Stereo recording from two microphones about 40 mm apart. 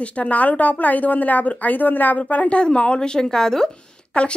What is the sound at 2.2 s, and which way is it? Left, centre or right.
A woman's voice, left.